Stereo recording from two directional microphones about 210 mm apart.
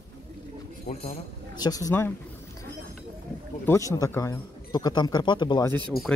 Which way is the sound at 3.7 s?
15° left (ahead or behind).